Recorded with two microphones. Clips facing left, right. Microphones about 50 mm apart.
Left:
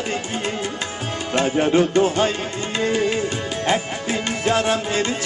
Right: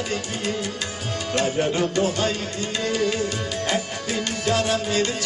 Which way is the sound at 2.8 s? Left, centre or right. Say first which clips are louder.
Left 3 dB; left.